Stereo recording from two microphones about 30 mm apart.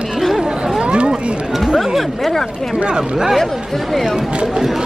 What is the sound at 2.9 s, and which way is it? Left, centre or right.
Speech, right.